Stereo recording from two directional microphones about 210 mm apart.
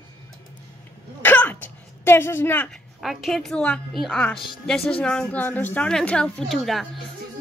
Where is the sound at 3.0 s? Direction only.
Centre (ahead or behind).